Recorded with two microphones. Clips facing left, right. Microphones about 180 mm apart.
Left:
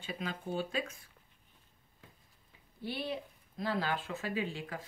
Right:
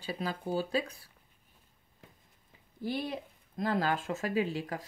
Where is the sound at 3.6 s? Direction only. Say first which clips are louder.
Right 4 dB; 45° right (ahead or behind).